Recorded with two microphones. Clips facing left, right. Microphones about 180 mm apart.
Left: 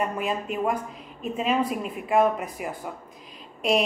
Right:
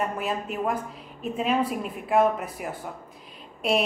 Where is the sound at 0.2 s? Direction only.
5° right (ahead or behind).